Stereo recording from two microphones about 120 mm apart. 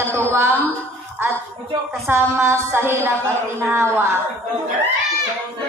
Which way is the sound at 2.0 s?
20° right (ahead or behind).